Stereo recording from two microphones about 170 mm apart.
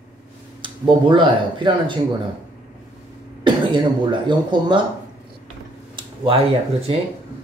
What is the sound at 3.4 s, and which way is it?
Speech, 25° right (ahead or behind).